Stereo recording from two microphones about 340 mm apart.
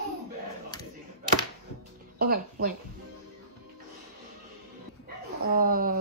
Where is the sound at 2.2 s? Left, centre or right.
Right.